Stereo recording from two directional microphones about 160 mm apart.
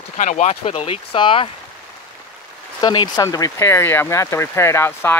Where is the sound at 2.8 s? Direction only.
30° left (ahead or behind).